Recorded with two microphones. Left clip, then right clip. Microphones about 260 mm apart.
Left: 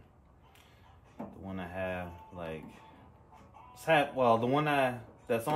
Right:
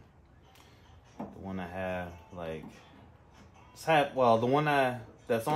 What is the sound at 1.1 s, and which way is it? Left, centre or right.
Drawer open or close, centre.